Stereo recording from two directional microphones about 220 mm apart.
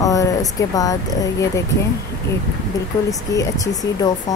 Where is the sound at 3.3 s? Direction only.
15° left (ahead or behind).